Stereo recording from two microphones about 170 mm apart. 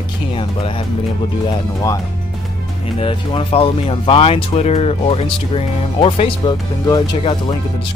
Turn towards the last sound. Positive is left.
turn(degrees=30)  # may be behind; listen again after turning